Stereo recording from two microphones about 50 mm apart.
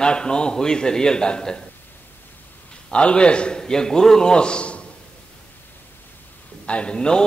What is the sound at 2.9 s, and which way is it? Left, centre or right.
A man's voice, left.